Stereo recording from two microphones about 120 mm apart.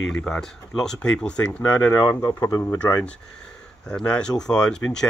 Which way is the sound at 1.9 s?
30° left (ahead or behind).